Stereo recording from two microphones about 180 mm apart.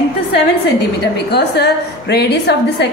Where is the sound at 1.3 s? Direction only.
65° left (ahead or behind).